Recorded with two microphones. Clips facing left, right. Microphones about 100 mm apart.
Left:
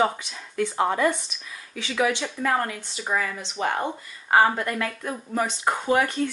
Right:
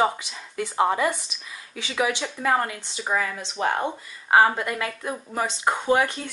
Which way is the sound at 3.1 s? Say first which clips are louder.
Right 1 dB; 25° right (ahead or behind).